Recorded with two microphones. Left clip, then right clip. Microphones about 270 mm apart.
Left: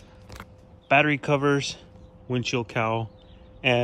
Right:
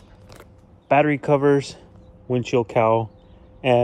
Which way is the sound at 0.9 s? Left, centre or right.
Left.